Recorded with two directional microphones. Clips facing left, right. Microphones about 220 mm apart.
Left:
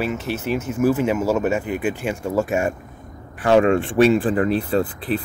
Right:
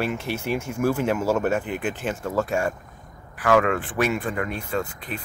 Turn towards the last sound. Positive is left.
turn(degrees=35)  # may be behind; listen again after turning